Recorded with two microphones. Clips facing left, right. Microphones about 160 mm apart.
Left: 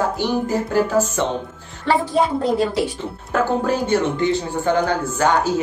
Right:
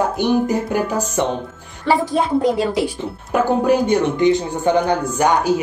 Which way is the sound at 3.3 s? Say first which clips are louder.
Right 4 dB; 15° right (ahead or behind).